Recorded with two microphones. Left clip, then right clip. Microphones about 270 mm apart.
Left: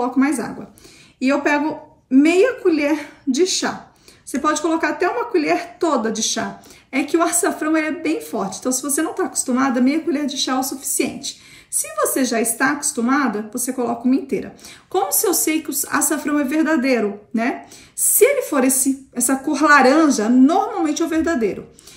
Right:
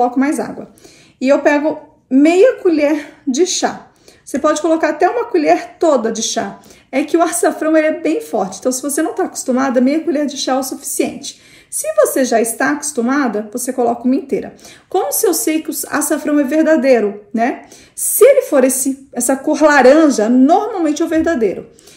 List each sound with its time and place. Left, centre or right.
0.0 s speech: centre